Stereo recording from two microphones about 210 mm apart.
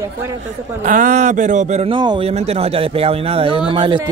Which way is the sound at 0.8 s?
40° right (ahead or behind).